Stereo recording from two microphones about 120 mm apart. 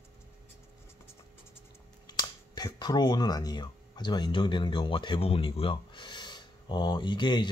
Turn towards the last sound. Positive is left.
turn(degrees=40)  # may be behind; listen again after turning